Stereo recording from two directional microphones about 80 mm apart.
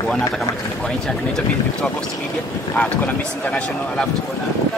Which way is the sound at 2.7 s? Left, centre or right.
Centre.